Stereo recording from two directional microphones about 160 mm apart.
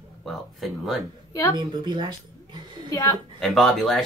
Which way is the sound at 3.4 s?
Centre (ahead or behind).